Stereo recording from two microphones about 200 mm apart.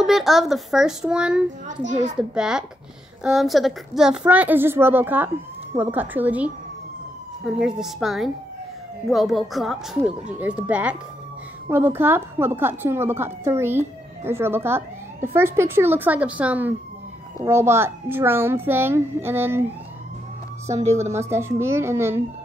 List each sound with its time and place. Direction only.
0.0 s speech: centre (ahead or behind)
1.7 s a child's voice: 40° right (ahead or behind)
2.1 s speech: 5° right (ahead or behind)
20.6 s speech: 15° right (ahead or behind)